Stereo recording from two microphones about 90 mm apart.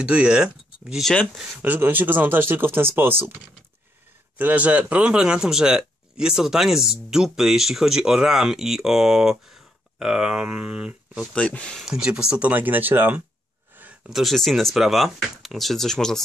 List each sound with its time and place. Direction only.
0.0 s speech: 10° right (ahead or behind)
1.6 s speech: 20° right (ahead or behind)
4.4 s speech: 20° right (ahead or behind)
11.3 s speech: 15° left (ahead or behind)
11.8 s speech: 5° right (ahead or behind)
13.7 s a sound: 20° right (ahead or behind)
14.1 s speech: centre (ahead or behind)